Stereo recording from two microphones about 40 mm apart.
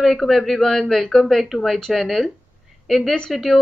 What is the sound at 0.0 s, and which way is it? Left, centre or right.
Speech, centre.